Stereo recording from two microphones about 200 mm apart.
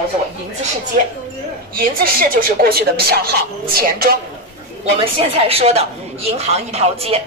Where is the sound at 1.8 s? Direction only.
45° right (ahead or behind).